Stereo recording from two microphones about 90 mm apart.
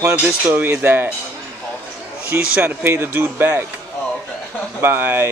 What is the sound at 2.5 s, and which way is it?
Speech, 20° right (ahead or behind).